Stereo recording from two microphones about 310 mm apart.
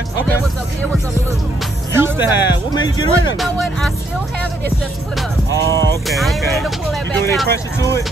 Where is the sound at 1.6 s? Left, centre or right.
Centre.